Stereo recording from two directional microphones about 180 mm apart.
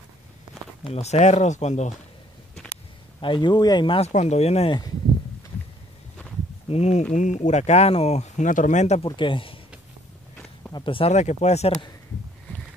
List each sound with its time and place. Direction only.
0.9 s speech: 40° left (ahead or behind)
3.2 s speech: 25° left (ahead or behind)
6.7 s speech: 35° left (ahead or behind)
10.7 s speech: 25° left (ahead or behind)